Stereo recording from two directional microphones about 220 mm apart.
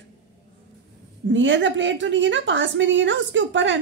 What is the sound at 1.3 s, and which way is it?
A woman's voice, 55° right (ahead or behind).